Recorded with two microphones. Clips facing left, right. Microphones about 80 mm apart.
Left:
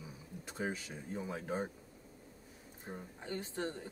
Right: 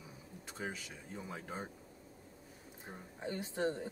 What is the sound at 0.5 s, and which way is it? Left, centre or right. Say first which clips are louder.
Speech: left 4 dB; centre.